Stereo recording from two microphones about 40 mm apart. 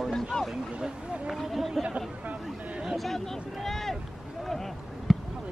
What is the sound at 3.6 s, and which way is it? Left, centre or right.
Boat, centre.